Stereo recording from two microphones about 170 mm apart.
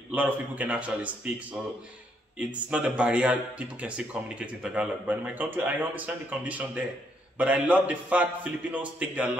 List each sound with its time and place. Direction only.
0.1 s speech: 10° right (ahead or behind)